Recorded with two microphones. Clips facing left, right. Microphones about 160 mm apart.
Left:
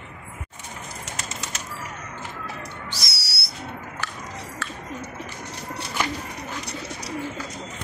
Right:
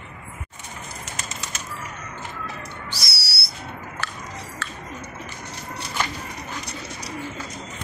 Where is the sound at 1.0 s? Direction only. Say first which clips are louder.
Left 1 dB; 75° left (ahead or behind).